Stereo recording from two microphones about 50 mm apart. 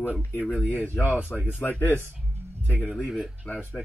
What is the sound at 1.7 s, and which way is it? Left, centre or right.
Speech, left.